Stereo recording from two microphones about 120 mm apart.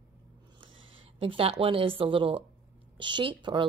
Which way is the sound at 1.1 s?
50° right (ahead or behind).